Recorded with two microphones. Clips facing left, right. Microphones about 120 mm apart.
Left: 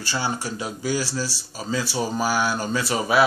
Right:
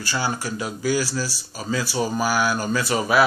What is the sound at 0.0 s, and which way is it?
Speech, 25° left (ahead or behind).